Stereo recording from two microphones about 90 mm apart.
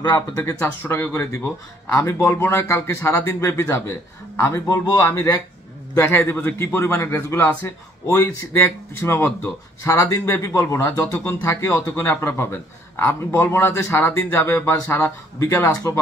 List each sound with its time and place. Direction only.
0.4 s speech: 30° left (ahead or behind)
5.9 s speech: 25° left (ahead or behind)
15.3 s speech: 35° left (ahead or behind)